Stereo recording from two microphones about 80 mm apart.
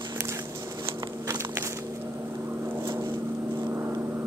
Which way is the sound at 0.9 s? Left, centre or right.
Right.